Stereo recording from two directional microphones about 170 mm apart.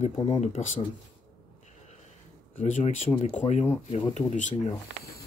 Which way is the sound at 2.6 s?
40° left (ahead or behind).